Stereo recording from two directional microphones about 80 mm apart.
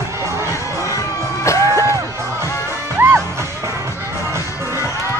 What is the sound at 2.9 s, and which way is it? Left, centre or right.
Music, right.